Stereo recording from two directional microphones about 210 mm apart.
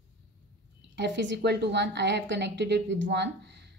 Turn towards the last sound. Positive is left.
turn(degrees=-55)  # may be behind; listen again after turning